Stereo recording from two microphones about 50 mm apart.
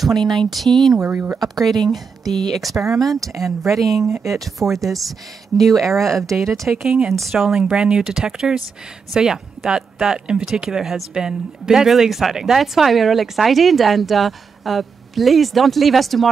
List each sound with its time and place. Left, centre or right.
0.2 s speech: centre
1.1 s speech: right
1.4 s speech: centre
6.7 s speech: centre
7.1 s speech: centre